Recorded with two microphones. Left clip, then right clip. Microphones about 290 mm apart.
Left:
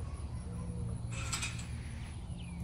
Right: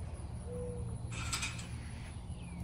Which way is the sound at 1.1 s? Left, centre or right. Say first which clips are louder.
Right 1 dB; centre.